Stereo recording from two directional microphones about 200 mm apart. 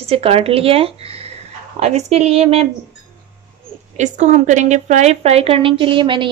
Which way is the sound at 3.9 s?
35° right (ahead or behind).